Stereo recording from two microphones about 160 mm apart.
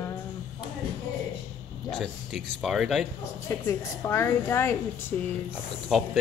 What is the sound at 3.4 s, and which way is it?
A woman's voice, 20° left (ahead or behind).